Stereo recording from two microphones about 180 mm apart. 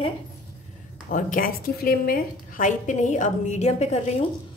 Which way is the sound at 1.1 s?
50° left (ahead or behind).